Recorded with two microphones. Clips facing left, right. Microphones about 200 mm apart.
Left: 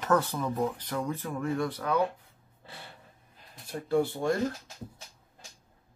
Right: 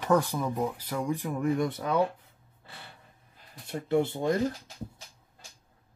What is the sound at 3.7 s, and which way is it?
Speech, 20° right (ahead or behind).